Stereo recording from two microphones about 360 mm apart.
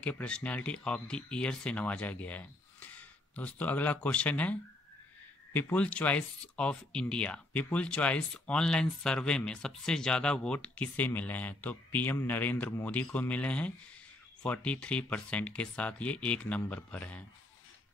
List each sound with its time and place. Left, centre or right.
0.0 s speech: centre